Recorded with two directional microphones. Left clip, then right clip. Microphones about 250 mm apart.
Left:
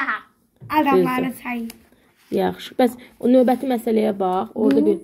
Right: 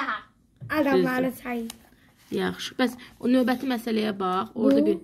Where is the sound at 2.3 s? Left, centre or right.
Centre.